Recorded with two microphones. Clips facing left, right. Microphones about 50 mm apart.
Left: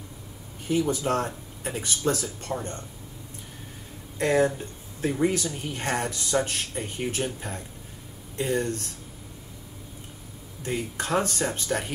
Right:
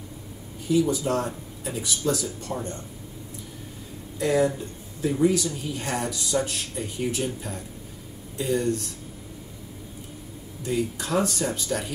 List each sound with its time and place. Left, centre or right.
0.7 s speech: left
4.2 s speech: left
10.6 s speech: left